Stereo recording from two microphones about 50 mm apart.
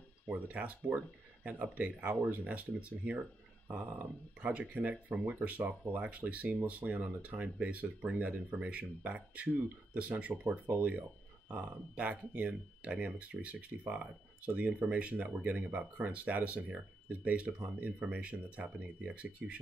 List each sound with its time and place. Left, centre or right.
0.3 s speech: right
2.4 s speech: right
4.4 s speech: right